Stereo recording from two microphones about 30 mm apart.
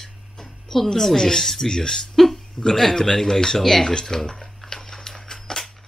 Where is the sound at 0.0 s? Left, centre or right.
Centre.